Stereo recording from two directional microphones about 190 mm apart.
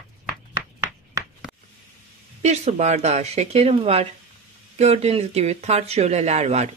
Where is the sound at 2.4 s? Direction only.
35° right (ahead or behind).